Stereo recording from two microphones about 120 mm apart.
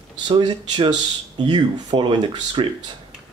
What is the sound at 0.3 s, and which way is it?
Speech, 45° right (ahead or behind).